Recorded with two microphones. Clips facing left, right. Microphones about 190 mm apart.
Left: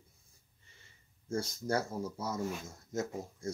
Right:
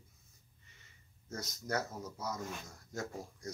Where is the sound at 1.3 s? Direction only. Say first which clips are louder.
Left 6 dB; 30° left (ahead or behind).